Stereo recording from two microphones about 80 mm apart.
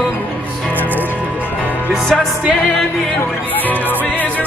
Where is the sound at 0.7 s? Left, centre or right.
Right.